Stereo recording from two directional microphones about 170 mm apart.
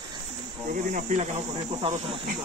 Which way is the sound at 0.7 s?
50° right (ahead or behind).